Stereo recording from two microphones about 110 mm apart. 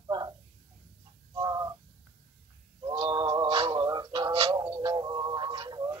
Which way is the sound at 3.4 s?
55° right (ahead or behind).